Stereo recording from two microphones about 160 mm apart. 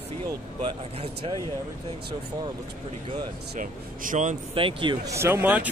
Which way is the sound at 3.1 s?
55° right (ahead or behind).